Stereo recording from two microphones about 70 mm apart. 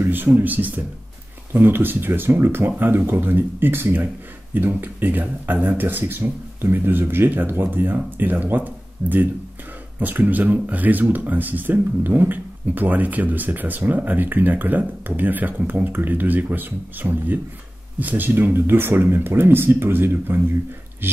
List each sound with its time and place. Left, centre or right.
0.0 s speech: right